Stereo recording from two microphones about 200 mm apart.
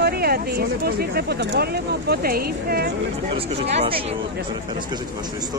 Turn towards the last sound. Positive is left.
turn(degrees=-30)  # may be behind; listen again after turning